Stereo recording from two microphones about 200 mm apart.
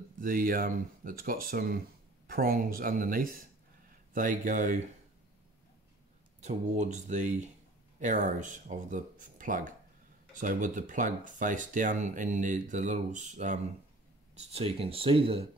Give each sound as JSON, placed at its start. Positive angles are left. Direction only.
{"t": 0.2, "sound": "speech", "side_deg": -45}
{"t": 6.4, "sound": "speech", "side_deg": -35}